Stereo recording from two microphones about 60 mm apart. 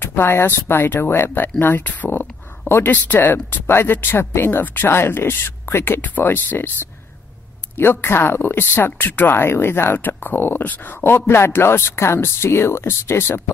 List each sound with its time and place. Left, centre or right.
0.0 s speech: left
4.5 s speech: left
5.9 s speech: left
7.7 s speech: left